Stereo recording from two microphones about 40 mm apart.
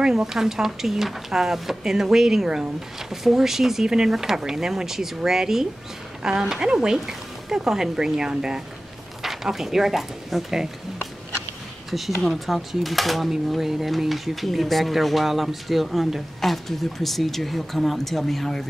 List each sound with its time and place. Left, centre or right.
0.0 s speech: centre
12.2 s speech: centre